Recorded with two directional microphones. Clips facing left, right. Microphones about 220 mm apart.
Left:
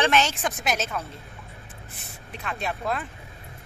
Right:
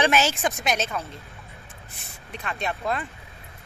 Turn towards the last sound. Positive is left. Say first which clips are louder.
# right 1 dB
turn(degrees=0)  # may be behind; listen again after turning